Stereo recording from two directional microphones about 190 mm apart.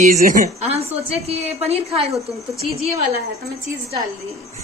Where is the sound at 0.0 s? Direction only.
45° right (ahead or behind).